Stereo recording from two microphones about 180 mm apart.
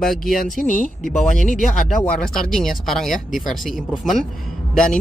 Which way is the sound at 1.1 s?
5° left (ahead or behind).